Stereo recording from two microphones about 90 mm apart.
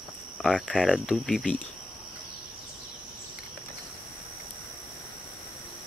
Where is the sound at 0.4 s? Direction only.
5° left (ahead or behind).